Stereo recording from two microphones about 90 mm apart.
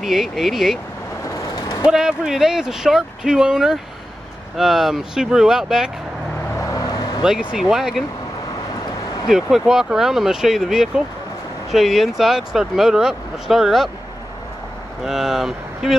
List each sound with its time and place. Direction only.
0.0 s speech: 5° right (ahead or behind)
1.3 s vehicle: 40° left (ahead or behind)
1.9 s speech: 5° right (ahead or behind)
6.6 s vehicle: 40° left (ahead or behind)
7.2 s speech: 5° right (ahead or behind)
9.3 s speech: 5° right (ahead or behind)
15.0 s speech: centre (ahead or behind)